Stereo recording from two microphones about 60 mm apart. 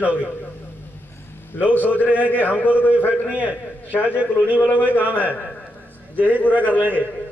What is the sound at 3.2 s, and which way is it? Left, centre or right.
A man's voice, right.